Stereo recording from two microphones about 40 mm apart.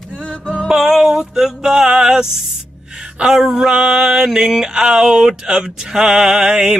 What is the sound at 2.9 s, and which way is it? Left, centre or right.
Music, centre.